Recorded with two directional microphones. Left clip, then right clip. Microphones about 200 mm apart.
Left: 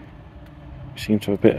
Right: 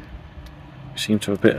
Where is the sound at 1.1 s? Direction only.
5° right (ahead or behind).